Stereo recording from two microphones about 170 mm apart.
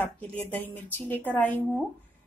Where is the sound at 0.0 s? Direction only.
10° left (ahead or behind).